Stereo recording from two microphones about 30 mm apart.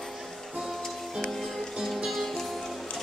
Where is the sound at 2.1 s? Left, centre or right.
Centre.